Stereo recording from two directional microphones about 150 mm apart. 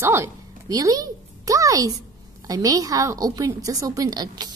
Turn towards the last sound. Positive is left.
turn(degrees=-25)  # may be behind; listen again after turning